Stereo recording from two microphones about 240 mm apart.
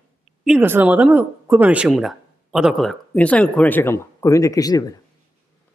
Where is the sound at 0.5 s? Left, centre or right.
Centre.